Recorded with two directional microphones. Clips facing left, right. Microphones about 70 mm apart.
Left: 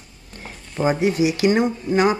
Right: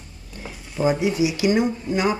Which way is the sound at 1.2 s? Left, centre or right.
Left.